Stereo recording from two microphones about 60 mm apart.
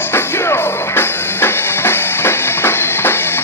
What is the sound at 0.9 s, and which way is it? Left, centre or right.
Music, left.